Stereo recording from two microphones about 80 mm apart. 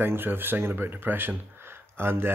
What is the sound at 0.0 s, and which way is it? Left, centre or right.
Speech, right.